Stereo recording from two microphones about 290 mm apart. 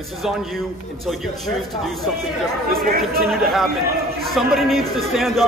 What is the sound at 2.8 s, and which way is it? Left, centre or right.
Speech, right.